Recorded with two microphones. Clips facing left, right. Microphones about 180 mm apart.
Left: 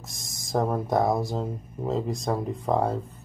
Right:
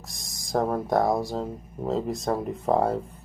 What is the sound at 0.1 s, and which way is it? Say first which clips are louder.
Speech: right 1 dB; centre (ahead or behind).